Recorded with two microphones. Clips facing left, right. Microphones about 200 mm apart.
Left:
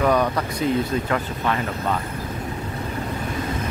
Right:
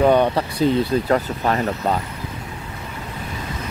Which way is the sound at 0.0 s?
30° right (ahead or behind).